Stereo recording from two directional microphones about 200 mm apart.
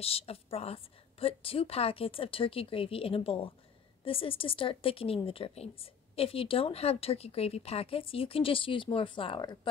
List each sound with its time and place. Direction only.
0.0 s speech: 30° left (ahead or behind)